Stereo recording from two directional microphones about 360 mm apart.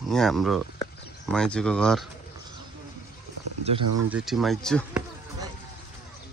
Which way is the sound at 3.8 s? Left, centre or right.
Right.